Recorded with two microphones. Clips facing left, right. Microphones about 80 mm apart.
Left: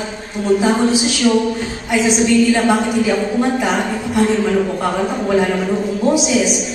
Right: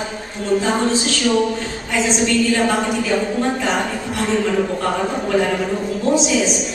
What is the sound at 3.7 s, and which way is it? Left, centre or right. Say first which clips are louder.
Speech: left 3 dB; centre.